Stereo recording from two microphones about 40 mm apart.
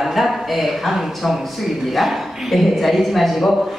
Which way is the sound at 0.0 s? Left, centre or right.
Centre.